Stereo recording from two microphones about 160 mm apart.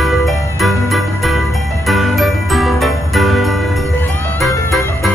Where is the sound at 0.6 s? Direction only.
Centre (ahead or behind).